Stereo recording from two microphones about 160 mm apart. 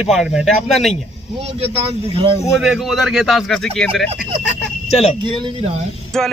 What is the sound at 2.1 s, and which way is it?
Speech, 35° right (ahead or behind).